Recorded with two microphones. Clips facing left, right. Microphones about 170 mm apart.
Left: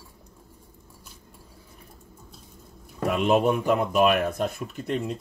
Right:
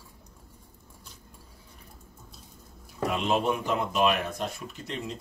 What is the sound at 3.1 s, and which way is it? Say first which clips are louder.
Speech: left 6 dB; 55° left (ahead or behind).